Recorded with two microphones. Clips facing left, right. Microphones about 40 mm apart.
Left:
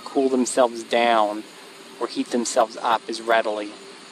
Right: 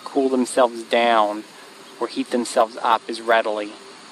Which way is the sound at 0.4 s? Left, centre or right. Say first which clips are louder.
Right 1 dB; centre.